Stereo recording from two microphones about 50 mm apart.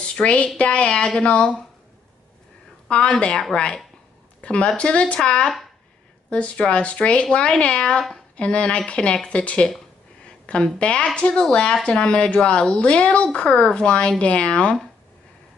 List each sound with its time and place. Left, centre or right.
0.0 s a sound: left
0.6 s speech: left
2.9 s speech: left